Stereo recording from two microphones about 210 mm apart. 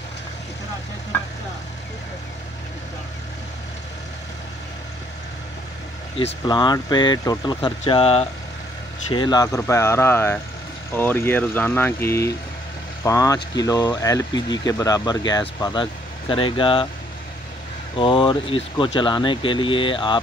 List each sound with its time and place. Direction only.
6.1 s speech: 25° left (ahead or behind)
17.9 s speech: 25° left (ahead or behind)